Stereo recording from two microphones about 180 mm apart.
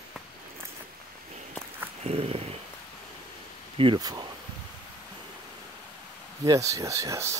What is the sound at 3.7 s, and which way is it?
Speech, 25° right (ahead or behind).